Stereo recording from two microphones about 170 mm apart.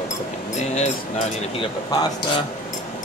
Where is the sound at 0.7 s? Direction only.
45° left (ahead or behind).